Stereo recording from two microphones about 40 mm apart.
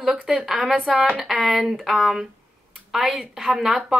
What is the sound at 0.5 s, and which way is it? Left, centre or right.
Speech, centre.